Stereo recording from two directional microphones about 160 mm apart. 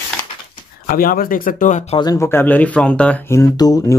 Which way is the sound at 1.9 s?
20° left (ahead or behind).